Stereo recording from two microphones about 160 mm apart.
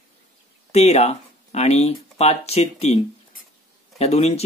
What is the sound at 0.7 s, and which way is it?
Speech, 40° left (ahead or behind).